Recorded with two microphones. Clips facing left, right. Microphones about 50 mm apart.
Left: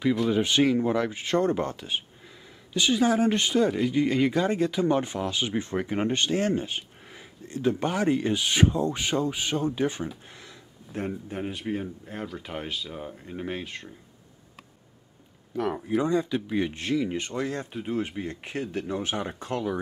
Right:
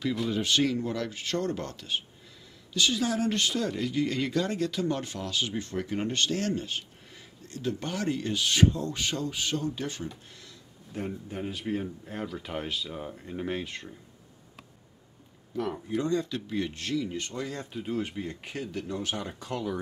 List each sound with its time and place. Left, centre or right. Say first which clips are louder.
0.3 s speech: left 3 dB; left
11.1 s speech: left 2 dB; centre
16.0 s speech: left 3 dB; centre
17.6 s speech: left 3 dB; centre
18.7 s speech: left 2 dB; left